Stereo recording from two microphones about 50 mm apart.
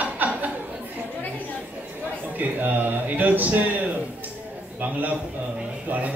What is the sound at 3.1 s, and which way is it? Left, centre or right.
Speech, right.